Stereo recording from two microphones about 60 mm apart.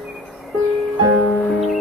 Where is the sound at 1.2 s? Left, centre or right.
Left.